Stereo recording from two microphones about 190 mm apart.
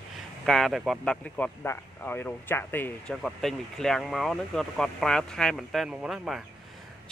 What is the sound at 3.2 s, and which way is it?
Speech, centre (ahead or behind).